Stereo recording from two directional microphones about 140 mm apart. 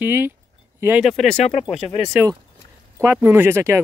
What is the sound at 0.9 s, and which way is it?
Speech, centre (ahead or behind).